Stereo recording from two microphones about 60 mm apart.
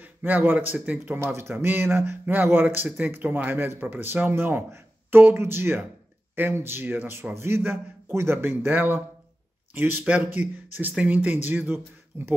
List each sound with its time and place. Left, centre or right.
0.0 s speech: right
1.1 s speech: right
11.7 s speech: right